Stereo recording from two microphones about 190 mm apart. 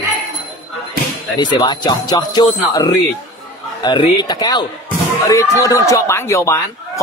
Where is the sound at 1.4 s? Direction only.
25° left (ahead or behind).